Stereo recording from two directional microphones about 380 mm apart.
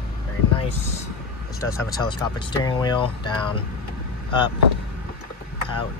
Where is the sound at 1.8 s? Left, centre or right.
Centre.